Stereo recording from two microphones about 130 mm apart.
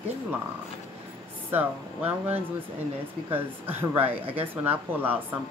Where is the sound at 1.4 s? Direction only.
15° right (ahead or behind).